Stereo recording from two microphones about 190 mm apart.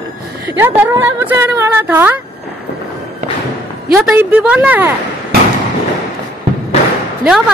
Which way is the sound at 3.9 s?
5° right (ahead or behind).